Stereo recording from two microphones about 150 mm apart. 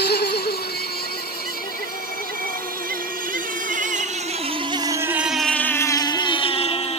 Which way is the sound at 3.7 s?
55° right (ahead or behind).